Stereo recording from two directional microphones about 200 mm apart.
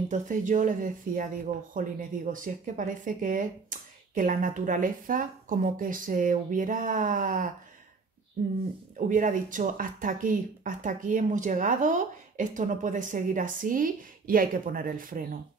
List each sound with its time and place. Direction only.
0.1 s speech: 40° right (ahead or behind)
8.9 s speech: 40° right (ahead or behind)